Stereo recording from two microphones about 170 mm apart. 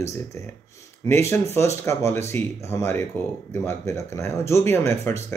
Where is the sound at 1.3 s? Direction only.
15° left (ahead or behind).